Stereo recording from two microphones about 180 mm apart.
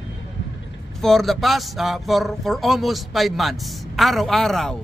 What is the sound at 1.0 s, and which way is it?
Speech, centre (ahead or behind).